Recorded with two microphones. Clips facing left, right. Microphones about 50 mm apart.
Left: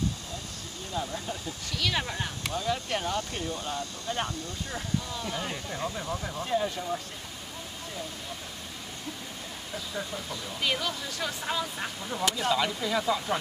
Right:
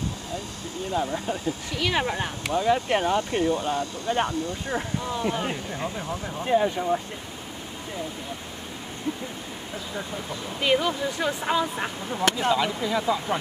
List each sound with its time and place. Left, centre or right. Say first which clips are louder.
0.9 s speech: right 6 dB; right
9.9 s speech: right 3 dB; centre
12.2 s speech: right 6 dB; right
12.8 s speech: right 3 dB; centre